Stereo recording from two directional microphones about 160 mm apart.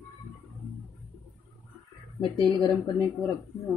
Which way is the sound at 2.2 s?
25° left (ahead or behind).